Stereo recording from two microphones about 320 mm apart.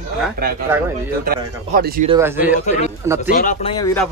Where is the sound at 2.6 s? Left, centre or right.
Left.